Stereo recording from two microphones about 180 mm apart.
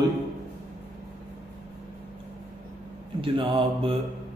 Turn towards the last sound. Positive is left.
turn(degrees=-30)  # may be behind; listen again after turning